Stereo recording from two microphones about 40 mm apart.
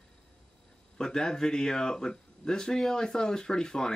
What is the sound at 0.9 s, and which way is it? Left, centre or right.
Speech, centre.